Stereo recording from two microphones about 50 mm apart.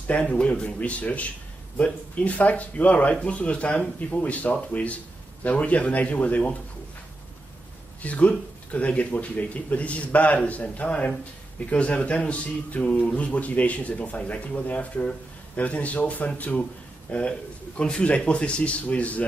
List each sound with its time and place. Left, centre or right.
0.0 s a man's voice: left
8.0 s a man's voice: left
17.3 s a man's voice: centre